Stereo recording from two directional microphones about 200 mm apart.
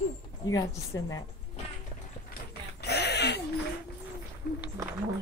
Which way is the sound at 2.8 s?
55° left (ahead or behind).